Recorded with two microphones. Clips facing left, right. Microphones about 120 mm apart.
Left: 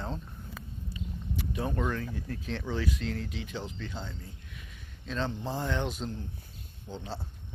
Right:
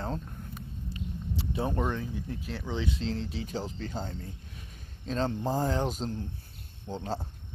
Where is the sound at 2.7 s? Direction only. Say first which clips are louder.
Right 2 dB; 25° right (ahead or behind).